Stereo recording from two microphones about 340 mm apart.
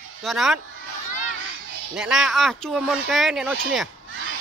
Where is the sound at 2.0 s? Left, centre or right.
Centre.